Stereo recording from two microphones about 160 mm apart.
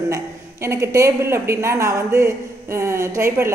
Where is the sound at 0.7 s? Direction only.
15° right (ahead or behind).